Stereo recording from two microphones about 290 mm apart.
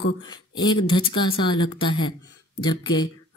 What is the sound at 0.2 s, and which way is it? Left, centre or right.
Speech, centre.